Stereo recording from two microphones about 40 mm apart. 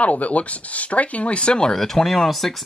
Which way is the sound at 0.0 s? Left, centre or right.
Left.